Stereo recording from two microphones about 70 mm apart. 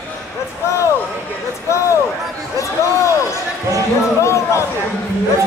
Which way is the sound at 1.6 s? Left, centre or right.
Left.